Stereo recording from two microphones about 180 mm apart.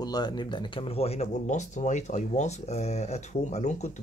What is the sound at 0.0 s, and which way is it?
Speech, 20° left (ahead or behind).